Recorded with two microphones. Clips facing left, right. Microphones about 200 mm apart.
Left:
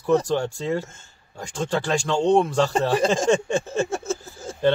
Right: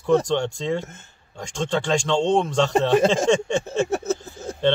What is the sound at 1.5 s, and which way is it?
A man's voice, 5° left (ahead or behind).